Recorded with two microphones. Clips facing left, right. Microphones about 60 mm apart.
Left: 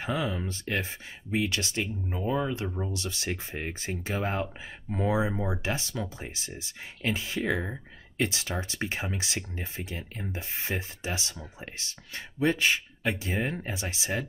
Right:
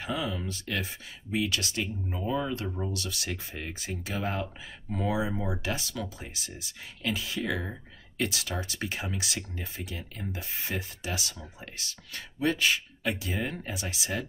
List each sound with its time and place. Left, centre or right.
0.0 s speech: left